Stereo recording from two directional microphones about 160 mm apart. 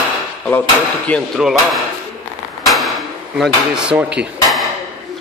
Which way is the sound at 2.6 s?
Centre (ahead or behind).